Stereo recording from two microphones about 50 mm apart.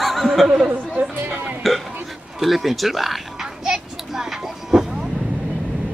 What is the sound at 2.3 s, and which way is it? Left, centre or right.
Children playing, centre.